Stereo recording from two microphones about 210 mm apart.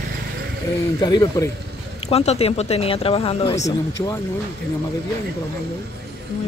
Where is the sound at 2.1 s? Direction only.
30° left (ahead or behind).